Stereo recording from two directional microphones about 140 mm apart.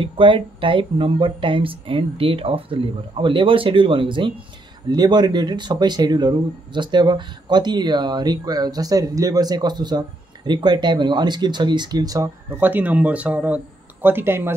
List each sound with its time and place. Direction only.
0.0 s speech: 40° right (ahead or behind)
12.5 s speech: 15° right (ahead or behind)